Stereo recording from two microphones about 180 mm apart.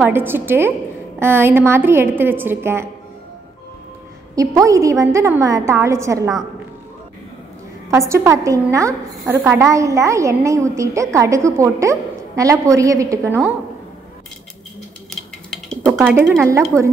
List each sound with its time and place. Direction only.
0.0 s a woman's voice: 10° right (ahead or behind)
4.4 s a woman's voice: 15° right (ahead or behind)
7.9 s a woman's voice: 15° right (ahead or behind)
15.0 s a sound: 5° left (ahead or behind)
16.0 s speech: 5° right (ahead or behind)